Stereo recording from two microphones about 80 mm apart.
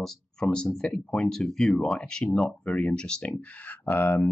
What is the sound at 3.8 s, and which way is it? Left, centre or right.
Speech, left.